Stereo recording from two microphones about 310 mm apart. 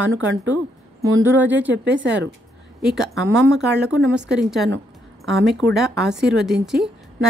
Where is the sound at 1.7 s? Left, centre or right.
Right.